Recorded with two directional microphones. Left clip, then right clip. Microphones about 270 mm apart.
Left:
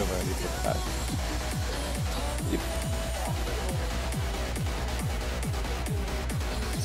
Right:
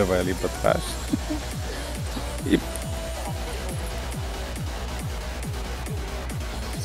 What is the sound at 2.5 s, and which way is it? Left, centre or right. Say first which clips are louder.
Speech: right 11 dB; right.